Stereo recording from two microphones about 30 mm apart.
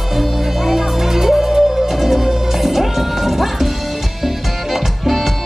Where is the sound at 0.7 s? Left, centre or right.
Centre.